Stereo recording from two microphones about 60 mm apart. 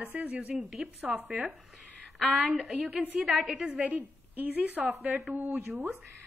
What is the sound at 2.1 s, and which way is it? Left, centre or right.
A woman's voice, centre.